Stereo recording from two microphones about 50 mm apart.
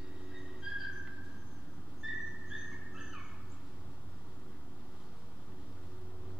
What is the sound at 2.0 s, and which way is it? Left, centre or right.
Dog, right.